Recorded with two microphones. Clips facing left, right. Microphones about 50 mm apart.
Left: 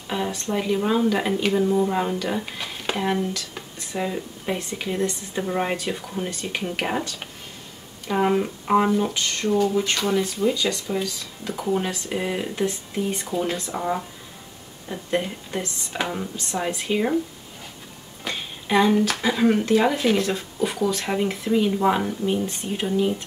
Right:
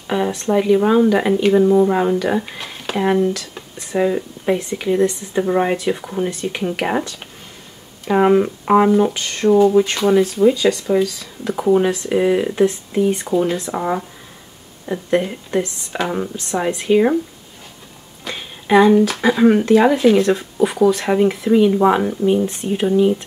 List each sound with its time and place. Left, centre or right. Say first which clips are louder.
0.1 s speech: right 8 dB; centre
5.0 s speech: right 8 dB; right
15.1 s speech: right 7 dB; centre
16.1 s speech: right 6 dB; right
16.7 s speech: right 10 dB; centre
18.2 s speech: right 2 dB; centre